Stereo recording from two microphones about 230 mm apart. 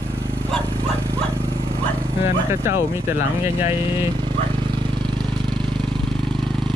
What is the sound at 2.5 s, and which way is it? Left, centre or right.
Speech, centre.